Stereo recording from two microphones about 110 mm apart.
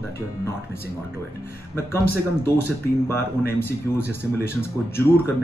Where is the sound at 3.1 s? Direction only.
20° left (ahead or behind).